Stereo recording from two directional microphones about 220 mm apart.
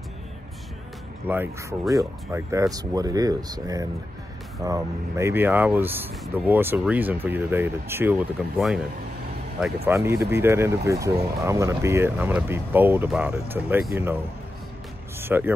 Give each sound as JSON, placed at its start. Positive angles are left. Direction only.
{"t": 1.2, "sound": "speech", "side_deg": -10}
{"t": 9.8, "sound": "speech", "side_deg": -10}
{"t": 15.1, "sound": "music", "side_deg": -10}